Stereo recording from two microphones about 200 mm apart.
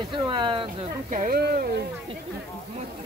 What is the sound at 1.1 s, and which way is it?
Speech, 40° right (ahead or behind).